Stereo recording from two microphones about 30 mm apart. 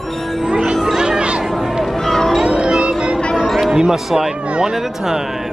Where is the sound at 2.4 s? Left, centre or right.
Right.